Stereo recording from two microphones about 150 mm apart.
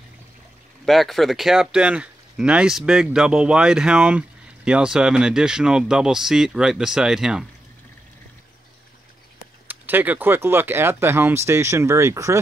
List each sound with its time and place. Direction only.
0.8 s speech: centre (ahead or behind)
9.7 s speech: 10° right (ahead or behind)